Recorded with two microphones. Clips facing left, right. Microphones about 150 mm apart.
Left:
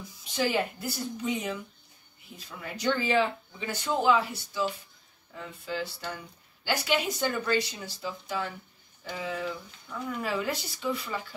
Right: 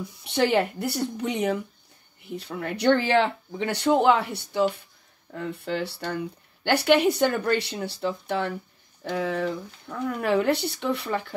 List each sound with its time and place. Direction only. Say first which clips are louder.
0.0 s speech: right 6 dB; 65° right (ahead or behind)